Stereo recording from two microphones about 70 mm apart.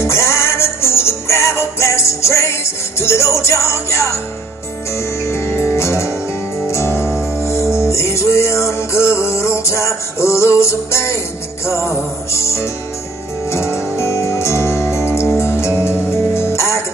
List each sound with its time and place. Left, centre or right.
0.0 s music: left